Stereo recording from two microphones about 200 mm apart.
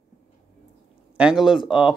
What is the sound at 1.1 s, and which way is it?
Speech, 5° right (ahead or behind).